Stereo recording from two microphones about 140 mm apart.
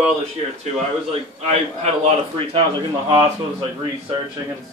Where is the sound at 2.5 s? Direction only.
35° right (ahead or behind).